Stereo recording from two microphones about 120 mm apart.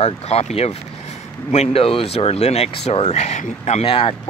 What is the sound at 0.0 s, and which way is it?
Speech, 60° left (ahead or behind).